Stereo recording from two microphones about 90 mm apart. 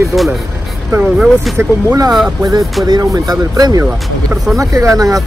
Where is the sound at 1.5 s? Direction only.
40° right (ahead or behind).